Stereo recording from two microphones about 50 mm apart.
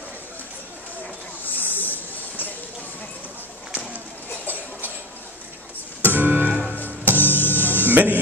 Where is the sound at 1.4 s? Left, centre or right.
Left.